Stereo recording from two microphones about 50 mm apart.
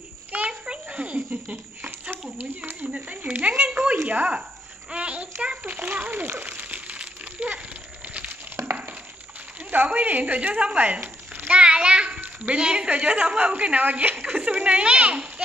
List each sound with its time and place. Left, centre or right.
0.3 s a sound: right
1.3 s a child's voice: right
6.4 s crumpling: right
8.6 s crushing: right
9.7 s a woman's voice: right
14.3 s a sound: right